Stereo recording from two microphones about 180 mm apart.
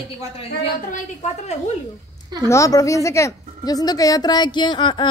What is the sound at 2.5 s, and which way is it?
A woman's voice, 20° left (ahead or behind).